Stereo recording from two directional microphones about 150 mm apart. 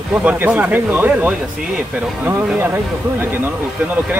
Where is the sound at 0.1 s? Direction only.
10° right (ahead or behind).